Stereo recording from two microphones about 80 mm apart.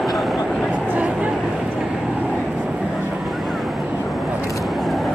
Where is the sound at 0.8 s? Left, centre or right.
Centre.